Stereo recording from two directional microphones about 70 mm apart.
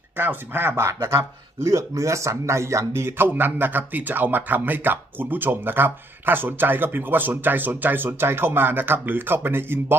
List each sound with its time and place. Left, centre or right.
0.2 s speech: right